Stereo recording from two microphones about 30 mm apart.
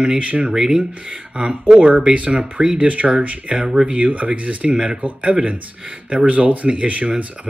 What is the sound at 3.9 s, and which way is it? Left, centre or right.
Speech, right.